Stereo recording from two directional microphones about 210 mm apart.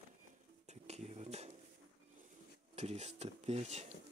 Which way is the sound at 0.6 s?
30° right (ahead or behind).